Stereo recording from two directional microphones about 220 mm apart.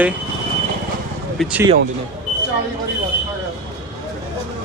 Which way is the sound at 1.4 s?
5° right (ahead or behind).